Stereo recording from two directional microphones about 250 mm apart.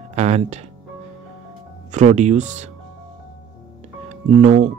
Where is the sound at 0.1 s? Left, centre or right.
Right.